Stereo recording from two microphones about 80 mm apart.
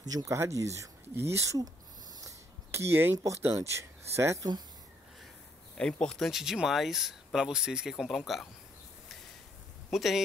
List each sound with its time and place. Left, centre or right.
0.0 s speech: right
2.2 s a sound: right
3.3 s speech: right
5.8 s speech: centre
9.8 s speech: centre